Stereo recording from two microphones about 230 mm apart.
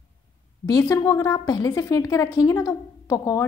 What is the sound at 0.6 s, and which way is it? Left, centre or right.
A woman's voice, centre.